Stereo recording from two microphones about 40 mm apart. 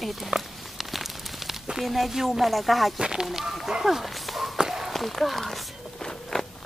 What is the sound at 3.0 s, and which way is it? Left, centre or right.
Speech, centre.